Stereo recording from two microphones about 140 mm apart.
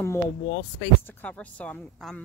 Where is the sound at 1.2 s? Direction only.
10° left (ahead or behind).